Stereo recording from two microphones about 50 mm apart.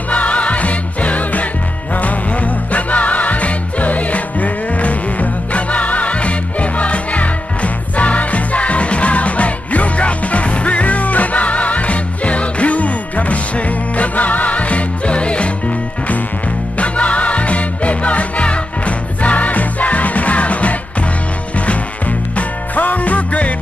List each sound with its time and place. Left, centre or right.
0.1 s music: left
16.7 s music: left
22.8 s music: left